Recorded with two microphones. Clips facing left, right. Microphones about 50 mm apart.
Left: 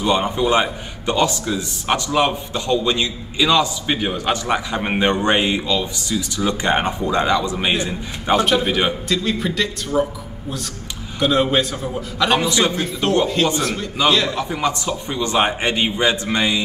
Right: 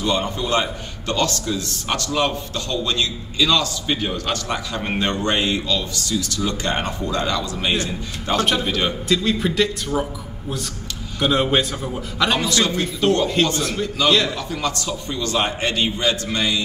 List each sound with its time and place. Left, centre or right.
0.0 s a man's voice: centre
9.1 s a man's voice: centre
11.1 s a man's voice: centre
12.4 s a man's voice: centre
12.7 s a man's voice: centre
14.5 s a man's voice: left